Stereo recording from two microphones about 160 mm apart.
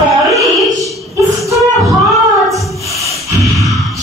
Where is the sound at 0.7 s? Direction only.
Centre (ahead or behind).